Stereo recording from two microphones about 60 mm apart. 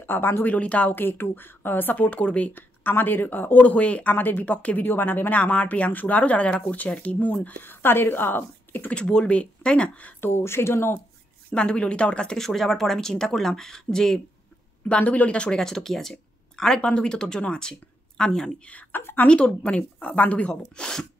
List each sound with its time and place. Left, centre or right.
0.0 s speech: left
0.6 s speech: left
0.9 s speech: left
2.0 s speech: left
4.5 s speech: left
4.8 s speech: left
8.9 s speech: centre
10.2 s speech: left
11.5 s speech: centre
12.4 s speech: centre
14.9 s speech: left
18.7 s speech: left
19.2 s speech: centre